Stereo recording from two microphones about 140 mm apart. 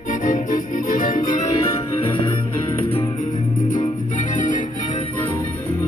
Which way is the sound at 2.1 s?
35° left (ahead or behind).